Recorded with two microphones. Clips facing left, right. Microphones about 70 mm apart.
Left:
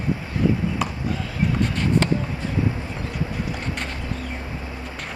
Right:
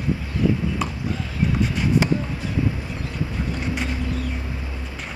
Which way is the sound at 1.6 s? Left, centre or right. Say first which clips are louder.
Right 1 dB; centre.